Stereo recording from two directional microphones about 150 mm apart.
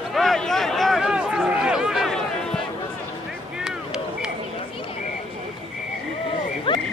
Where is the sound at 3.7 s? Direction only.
5° right (ahead or behind).